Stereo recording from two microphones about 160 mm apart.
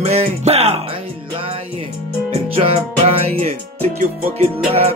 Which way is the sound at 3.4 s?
40° right (ahead or behind).